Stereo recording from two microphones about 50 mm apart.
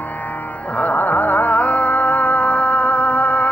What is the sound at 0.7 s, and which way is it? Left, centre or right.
Music, left.